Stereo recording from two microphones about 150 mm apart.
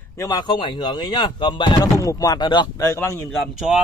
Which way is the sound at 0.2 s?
25° left (ahead or behind).